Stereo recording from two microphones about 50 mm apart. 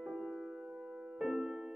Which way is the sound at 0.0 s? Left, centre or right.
Centre.